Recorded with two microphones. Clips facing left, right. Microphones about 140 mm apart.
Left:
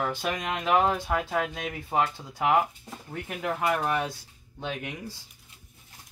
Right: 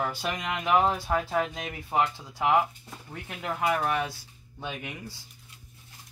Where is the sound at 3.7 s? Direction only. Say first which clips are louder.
Right 1 dB; centre (ahead or behind).